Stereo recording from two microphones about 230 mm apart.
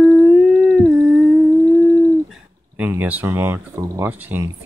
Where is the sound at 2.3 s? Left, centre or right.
Centre.